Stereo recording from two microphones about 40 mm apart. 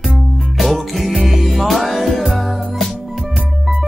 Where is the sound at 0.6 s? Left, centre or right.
Centre.